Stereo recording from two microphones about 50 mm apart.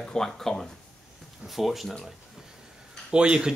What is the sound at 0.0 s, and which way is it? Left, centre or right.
Speech, centre.